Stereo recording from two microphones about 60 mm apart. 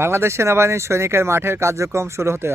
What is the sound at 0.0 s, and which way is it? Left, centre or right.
Speech, right.